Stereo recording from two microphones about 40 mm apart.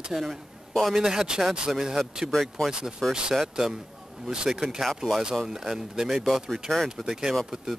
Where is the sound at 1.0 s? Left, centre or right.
Centre.